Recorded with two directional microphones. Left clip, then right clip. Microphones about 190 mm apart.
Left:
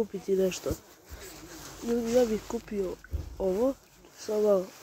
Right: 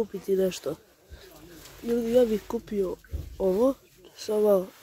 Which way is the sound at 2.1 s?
15° right (ahead or behind).